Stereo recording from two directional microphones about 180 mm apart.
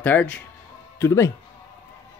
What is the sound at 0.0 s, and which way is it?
Speech, 10° left (ahead or behind).